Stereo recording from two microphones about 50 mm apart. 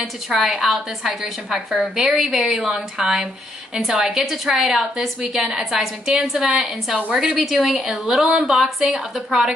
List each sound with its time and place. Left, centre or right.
0.0 s a woman's voice: centre
3.7 s a woman's voice: centre
4.0 s a woman's voice: centre
4.3 s a woman's voice: centre